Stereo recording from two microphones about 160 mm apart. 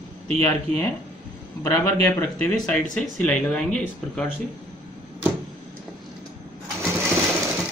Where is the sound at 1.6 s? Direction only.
20° left (ahead or behind).